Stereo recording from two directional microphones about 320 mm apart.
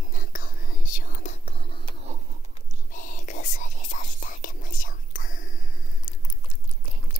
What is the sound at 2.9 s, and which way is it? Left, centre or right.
Whispering, left.